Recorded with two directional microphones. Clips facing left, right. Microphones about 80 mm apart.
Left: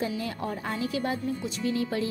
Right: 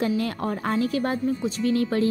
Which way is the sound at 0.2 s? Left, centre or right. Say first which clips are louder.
Right 5 dB; right.